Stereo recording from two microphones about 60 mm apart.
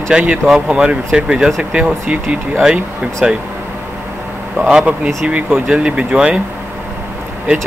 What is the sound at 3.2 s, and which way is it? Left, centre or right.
Speech, centre.